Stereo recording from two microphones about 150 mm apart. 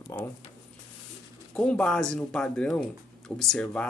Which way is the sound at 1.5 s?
5° left (ahead or behind).